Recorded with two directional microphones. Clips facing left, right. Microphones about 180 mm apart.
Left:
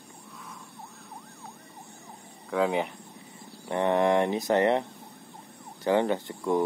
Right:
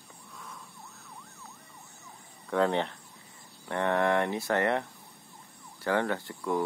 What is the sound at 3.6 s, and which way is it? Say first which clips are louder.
Speech: left 3 dB; 20° left (ahead or behind).